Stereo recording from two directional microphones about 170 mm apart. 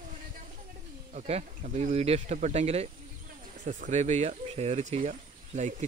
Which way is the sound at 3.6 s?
50° right (ahead or behind).